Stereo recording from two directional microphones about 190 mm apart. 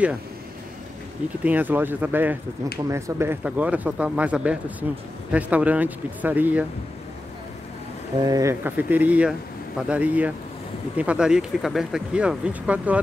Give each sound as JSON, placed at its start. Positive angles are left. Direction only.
{"t": 1.4, "sound": "speech", "side_deg": -10}
{"t": 8.2, "sound": "speech", "side_deg": -20}